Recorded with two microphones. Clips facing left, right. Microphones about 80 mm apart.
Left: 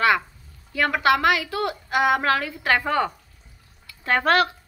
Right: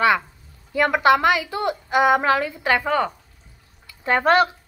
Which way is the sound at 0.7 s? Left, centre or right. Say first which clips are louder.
Right 3 dB; centre.